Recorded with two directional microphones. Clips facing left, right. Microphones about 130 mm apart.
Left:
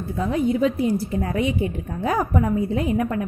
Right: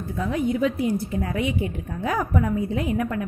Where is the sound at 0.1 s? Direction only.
30° left (ahead or behind).